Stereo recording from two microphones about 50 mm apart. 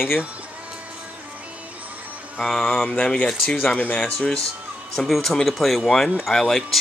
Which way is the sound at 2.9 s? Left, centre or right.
Left.